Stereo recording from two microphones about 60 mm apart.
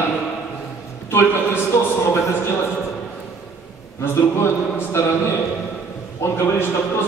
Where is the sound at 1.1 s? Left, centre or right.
Left.